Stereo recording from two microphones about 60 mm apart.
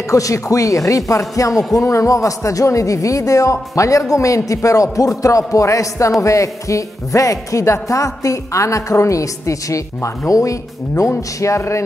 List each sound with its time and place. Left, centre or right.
0.1 s speech: left